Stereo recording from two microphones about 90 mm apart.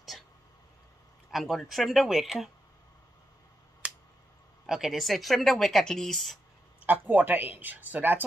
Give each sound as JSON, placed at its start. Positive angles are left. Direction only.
{"t": 1.3, "sound": "speech", "side_deg": 0}
{"t": 3.8, "sound": "a sound", "side_deg": -15}
{"t": 4.6, "sound": "speech", "side_deg": -5}
{"t": 6.8, "sound": "speech", "side_deg": -20}